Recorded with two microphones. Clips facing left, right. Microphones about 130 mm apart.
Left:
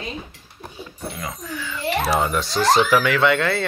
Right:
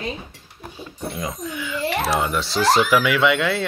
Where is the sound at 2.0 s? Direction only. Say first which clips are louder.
Left 3 dB; centre (ahead or behind).